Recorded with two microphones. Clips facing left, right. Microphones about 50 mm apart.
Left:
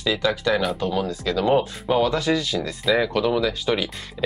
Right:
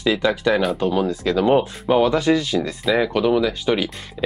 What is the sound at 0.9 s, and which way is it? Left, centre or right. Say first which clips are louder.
Speech: right 4 dB; right.